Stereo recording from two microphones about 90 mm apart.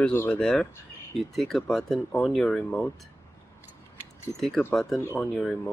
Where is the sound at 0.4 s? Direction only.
10° left (ahead or behind).